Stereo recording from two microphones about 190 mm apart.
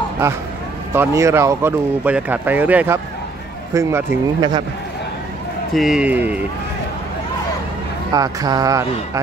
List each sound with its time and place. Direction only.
0.9 s a man's voice: 15° right (ahead or behind)
5.8 s speech: 5° right (ahead or behind)
8.1 s a man's voice: 20° right (ahead or behind)